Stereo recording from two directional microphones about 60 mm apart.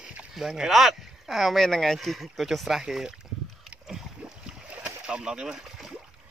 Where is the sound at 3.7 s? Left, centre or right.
Centre.